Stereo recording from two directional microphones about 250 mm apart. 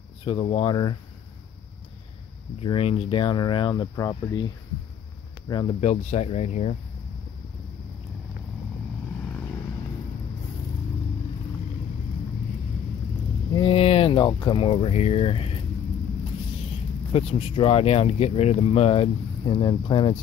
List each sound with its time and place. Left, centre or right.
0.2 s speech: left
2.6 s speech: left
5.5 s speech: left
13.6 s speech: left
17.1 s speech: left